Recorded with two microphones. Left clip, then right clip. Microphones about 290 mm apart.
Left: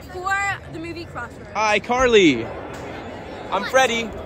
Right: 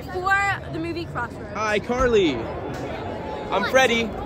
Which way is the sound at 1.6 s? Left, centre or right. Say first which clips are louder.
Left 4 dB; left.